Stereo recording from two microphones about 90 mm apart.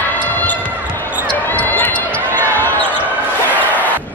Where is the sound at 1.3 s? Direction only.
20° left (ahead or behind).